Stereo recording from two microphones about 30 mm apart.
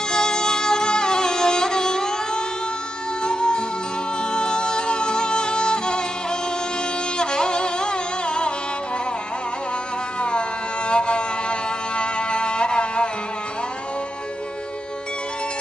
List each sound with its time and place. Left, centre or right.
0.1 s music: left
7.2 s music: left
10.9 s music: left